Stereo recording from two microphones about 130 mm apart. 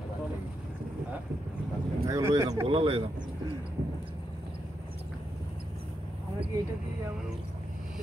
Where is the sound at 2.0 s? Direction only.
25° right (ahead or behind).